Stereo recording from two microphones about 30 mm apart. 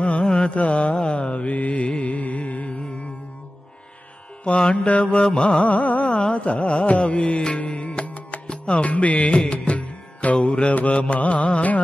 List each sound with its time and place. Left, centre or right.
0.2 s carnatic music: left
0.6 s mantra: left
2.0 s music: left
4.5 s mantra: left
4.7 s mantra: left
5.2 s mantra: left
5.6 s carnatic music: left
6.3 s music: left
8.8 s mantra: left
9.5 s music: left
10.9 s mantra: left